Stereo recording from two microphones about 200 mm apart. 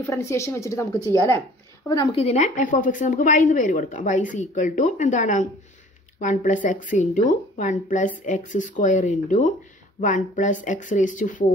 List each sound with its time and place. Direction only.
0.0 s speech: 15° left (ahead or behind)
2.1 s speech: 35° left (ahead or behind)